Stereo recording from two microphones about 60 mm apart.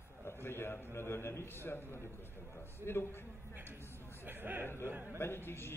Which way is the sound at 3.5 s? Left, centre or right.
Right.